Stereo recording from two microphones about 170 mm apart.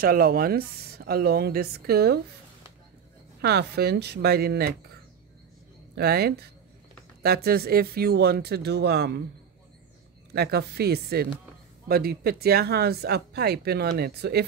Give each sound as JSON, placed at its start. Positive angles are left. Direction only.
{"t": 0.0, "sound": "speech", "side_deg": -60}
{"t": 3.3, "sound": "speech", "side_deg": -70}
{"t": 5.9, "sound": "speech", "side_deg": -70}
{"t": 10.3, "sound": "speech", "side_deg": -70}